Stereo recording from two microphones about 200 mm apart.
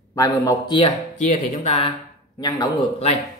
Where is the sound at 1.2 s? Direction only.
35° left (ahead or behind); by 2.7 s 20° left (ahead or behind).